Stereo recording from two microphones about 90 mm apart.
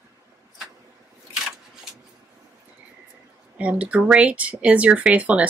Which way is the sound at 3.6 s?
15° right (ahead or behind).